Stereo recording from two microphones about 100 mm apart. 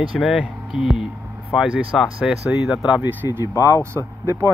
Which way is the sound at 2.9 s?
15° right (ahead or behind).